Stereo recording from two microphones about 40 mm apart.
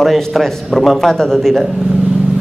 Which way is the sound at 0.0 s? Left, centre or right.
Centre.